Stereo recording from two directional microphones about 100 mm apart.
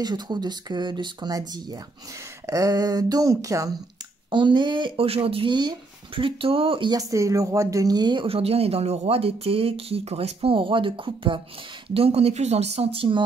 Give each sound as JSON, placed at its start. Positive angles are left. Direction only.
{"t": 0.0, "sound": "speech", "side_deg": -45}
{"t": 4.3, "sound": "speech", "side_deg": -50}
{"t": 6.9, "sound": "speech", "side_deg": -35}
{"t": 8.3, "sound": "speech", "side_deg": -80}
{"t": 11.9, "sound": "speech", "side_deg": -75}